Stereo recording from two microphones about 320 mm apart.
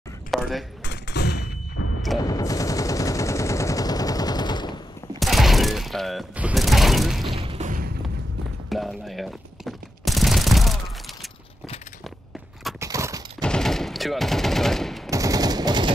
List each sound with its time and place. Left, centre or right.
0.3 s speech: centre
0.8 s artillery fire: left
2.1 s machine gun: centre
5.2 s mechanisms: centre
7.3 s thump: centre
8.6 s fusillade: centre
12.6 s a sound: centre
13.4 s machine gun: centre
15.0 s machine gun: centre